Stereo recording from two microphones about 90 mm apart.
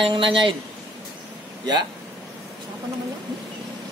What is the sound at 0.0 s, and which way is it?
Speech, 70° right (ahead or behind).